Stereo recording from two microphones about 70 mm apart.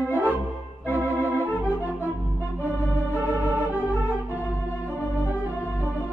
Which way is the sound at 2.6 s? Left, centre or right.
Right.